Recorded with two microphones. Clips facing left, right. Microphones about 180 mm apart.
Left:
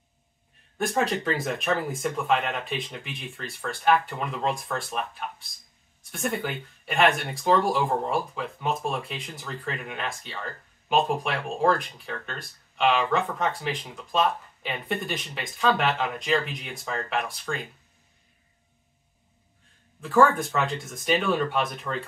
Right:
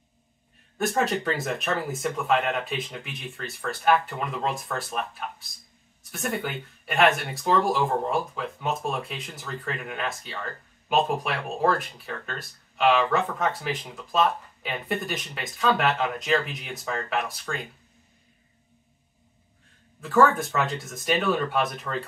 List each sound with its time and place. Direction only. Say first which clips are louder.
0.7 s speech: right 1 dB; centre (ahead or behind)
20.0 s speech: even; centre (ahead or behind)